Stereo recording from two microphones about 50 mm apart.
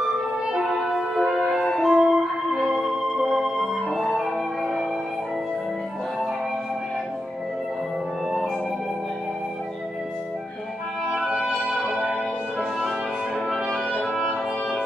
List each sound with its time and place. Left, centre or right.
0.0 s music: centre
1.9 s music: centre
3.5 s music: centre
11.1 s music: centre
11.3 s music: centre
14.0 s brass instrument: centre